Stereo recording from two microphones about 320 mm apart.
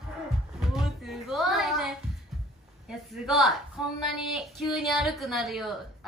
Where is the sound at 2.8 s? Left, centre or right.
Centre.